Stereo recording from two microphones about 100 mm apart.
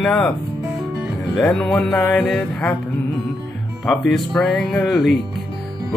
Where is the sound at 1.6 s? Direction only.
5° left (ahead or behind).